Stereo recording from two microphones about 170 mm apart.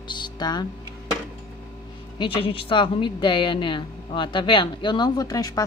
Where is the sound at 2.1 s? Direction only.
30° left (ahead or behind).